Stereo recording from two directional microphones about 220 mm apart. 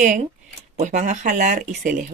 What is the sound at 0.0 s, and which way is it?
Speech, 35° right (ahead or behind).